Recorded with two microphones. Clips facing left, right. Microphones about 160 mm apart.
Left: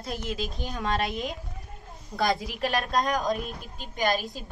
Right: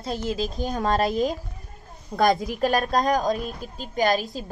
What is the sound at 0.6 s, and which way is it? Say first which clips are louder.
A woman's voice: right 6 dB; 45° right (ahead or behind).